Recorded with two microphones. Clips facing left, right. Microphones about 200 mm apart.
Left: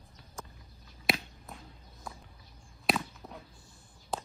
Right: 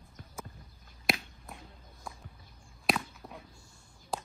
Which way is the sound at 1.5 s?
Centre (ahead or behind).